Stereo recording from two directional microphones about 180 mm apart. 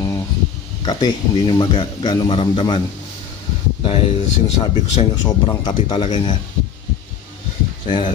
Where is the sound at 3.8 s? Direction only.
30° left (ahead or behind).